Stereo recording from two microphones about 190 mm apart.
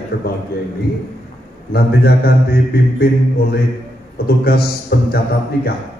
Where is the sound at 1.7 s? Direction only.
55° left (ahead or behind).